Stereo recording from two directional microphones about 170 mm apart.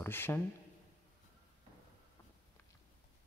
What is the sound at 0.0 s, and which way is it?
Speech, 15° left (ahead or behind).